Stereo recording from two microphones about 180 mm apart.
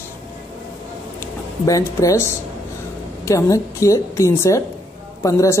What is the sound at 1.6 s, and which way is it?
A woman's voice, 20° left (ahead or behind).